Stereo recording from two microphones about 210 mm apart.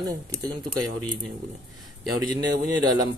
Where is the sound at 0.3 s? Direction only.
20° right (ahead or behind).